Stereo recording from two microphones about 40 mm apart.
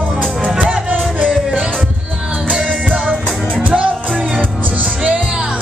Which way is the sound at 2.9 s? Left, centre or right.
Right.